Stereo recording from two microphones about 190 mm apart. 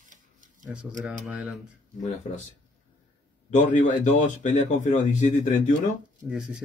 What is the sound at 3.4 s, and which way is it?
A man's voice, 40° left (ahead or behind).